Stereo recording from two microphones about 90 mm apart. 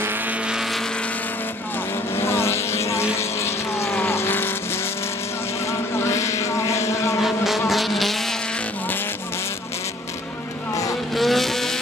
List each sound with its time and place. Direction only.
2.1 s vehicle: 25° left (ahead or behind)
5.7 s vehicle: 30° left (ahead or behind)
7.2 s vehicle: centre (ahead or behind)
11.1 s vehicle: centre (ahead or behind)